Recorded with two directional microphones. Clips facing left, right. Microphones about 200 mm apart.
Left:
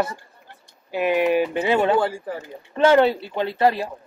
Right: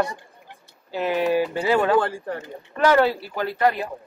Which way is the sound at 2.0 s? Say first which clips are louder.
Left 1 dB; 10° left (ahead or behind).